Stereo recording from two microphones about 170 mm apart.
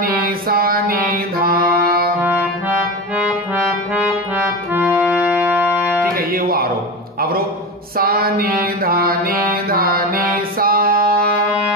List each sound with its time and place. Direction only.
0.0 s music: 60° right (ahead or behind)
3.2 s music: 10° right (ahead or behind)
4.7 s accordion: 10° right (ahead or behind)
5.2 s music: 10° right (ahead or behind)
6.1 s music: 60° right (ahead or behind)
8.0 s mantra: 60° right (ahead or behind)
9.7 s a sound: 60° right (ahead or behind)